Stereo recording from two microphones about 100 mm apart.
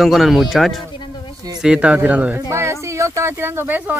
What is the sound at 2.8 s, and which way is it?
Speech, 30° right (ahead or behind).